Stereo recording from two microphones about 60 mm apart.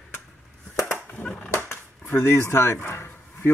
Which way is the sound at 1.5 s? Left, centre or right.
Left.